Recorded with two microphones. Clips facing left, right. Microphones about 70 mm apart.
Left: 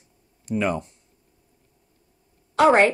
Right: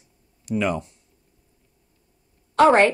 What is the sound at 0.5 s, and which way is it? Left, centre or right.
Speech, left.